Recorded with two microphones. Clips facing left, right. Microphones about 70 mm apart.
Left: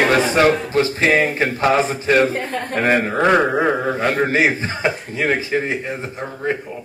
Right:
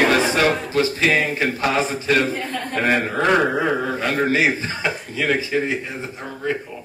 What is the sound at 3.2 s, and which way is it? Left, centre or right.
Speech, centre.